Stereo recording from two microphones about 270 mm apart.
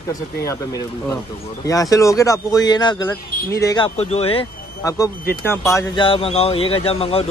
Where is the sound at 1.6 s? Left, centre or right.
Centre.